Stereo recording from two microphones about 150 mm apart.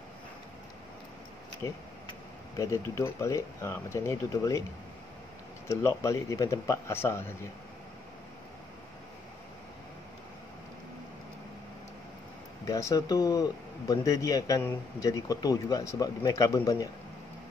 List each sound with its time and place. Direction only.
2.5 s speech: 20° left (ahead or behind)
5.7 s speech: 20° left (ahead or behind)
12.6 s speech: 20° left (ahead or behind)